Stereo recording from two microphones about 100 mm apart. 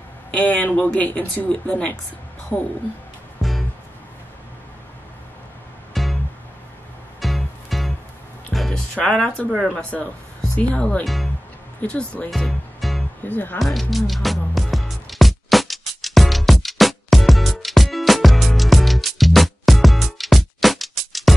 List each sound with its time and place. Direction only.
0.3 s speech: 15° left (ahead or behind)
3.3 s music: centre (ahead or behind)
5.9 s music: centre (ahead or behind)
7.2 s music: centre (ahead or behind)
9.6 s speech: 15° left (ahead or behind)
12.3 s music: centre (ahead or behind)
13.2 s speech: 15° left (ahead or behind)
13.6 s music: centre (ahead or behind)